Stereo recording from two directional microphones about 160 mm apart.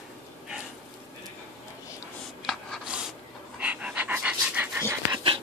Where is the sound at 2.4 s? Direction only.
Centre (ahead or behind).